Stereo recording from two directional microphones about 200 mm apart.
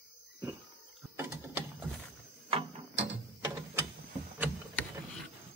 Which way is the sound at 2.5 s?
30° right (ahead or behind).